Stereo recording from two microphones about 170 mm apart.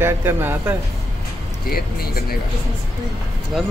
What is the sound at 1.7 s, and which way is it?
Speech, 65° left (ahead or behind).